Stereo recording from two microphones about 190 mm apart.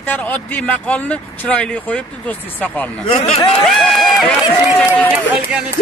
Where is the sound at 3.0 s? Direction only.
30° left (ahead or behind).